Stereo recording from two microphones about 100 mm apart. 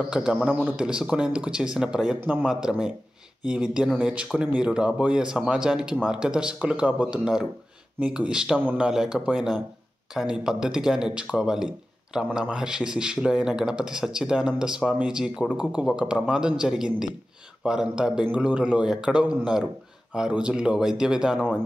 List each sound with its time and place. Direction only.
0.1 s a man's voice: 10° right (ahead or behind)
0.7 s speech: 10° right (ahead or behind)